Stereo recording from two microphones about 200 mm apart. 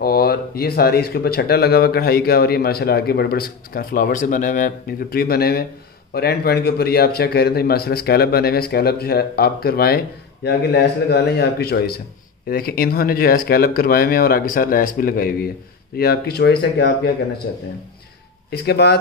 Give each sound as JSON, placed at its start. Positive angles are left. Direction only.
{"t": 0.0, "sound": "speech", "side_deg": 50}
{"t": 18.5, "sound": "speech", "side_deg": 55}